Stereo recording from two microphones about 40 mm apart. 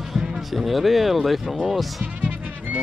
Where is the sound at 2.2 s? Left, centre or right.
Right.